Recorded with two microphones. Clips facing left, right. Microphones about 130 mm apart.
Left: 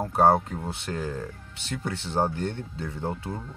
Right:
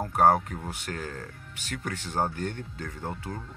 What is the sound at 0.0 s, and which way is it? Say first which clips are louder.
Speech: left 1 dB; 25° left (ahead or behind).